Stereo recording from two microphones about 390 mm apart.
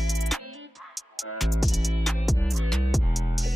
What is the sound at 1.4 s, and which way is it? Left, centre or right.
Music, centre.